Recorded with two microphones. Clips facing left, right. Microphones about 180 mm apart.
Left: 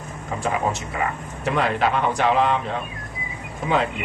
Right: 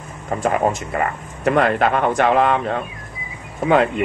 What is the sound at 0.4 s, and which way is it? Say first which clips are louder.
Speech: right 5 dB; 55° right (ahead or behind).